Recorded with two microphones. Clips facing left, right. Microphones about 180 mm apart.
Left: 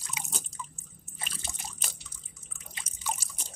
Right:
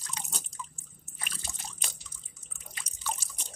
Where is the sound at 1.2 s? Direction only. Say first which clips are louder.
Left 2 dB; 25° left (ahead or behind).